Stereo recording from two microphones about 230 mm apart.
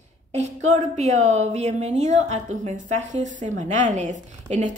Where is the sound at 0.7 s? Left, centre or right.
Right.